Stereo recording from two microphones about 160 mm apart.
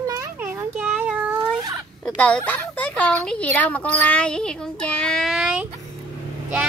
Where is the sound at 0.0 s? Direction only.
20° right (ahead or behind).